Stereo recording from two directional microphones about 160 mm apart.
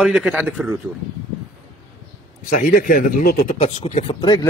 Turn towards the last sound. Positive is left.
turn(degrees=25)  # may be behind; listen again after turning